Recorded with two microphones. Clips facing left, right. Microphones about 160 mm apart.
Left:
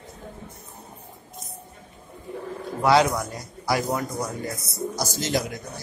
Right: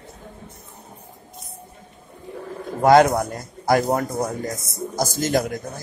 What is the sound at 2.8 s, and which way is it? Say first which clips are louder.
A man's voice: right 5 dB; 50° right (ahead or behind).